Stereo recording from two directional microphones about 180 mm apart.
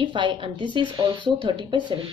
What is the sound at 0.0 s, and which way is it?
Speech, 25° right (ahead or behind).